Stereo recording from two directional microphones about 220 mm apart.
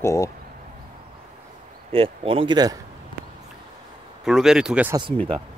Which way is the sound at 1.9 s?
25° right (ahead or behind).